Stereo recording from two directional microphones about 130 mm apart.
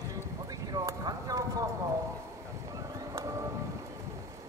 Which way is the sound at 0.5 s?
30° right (ahead or behind).